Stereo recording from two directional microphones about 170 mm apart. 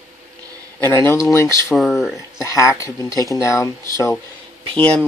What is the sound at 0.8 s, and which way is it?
Speech, 15° left (ahead or behind).